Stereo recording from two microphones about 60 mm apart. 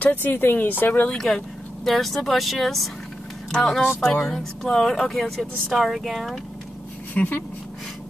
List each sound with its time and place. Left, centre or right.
0.0 s speech: left
1.1 s speech: centre
7.2 s speech: left